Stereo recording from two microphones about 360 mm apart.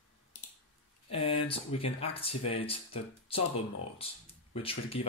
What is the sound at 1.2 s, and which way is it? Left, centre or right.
Speech, centre.